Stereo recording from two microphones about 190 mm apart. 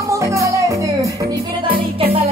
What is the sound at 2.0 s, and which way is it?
Music, 30° right (ahead or behind).